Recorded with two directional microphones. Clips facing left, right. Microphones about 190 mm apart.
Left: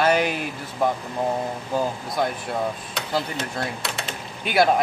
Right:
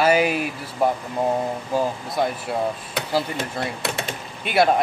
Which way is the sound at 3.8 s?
50° right (ahead or behind).